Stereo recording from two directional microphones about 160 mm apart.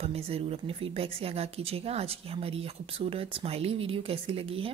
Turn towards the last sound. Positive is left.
turn(degrees=-35)  # may be behind; listen again after turning